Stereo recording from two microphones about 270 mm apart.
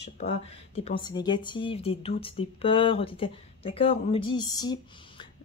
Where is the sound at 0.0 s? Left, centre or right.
Left.